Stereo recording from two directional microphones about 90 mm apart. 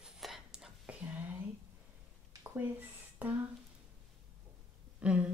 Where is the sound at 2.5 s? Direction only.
20° right (ahead or behind).